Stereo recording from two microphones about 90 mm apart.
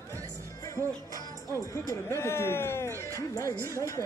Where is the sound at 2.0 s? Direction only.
30° left (ahead or behind).